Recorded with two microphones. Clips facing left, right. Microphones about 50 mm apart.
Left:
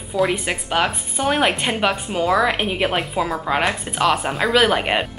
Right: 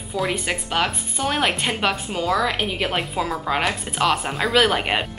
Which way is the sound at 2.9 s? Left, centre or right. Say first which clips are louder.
Left 2 dB; centre.